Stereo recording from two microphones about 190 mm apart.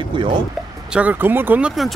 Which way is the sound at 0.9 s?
10° right (ahead or behind).